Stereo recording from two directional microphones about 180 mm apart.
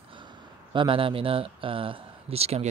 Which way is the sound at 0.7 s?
30° right (ahead or behind).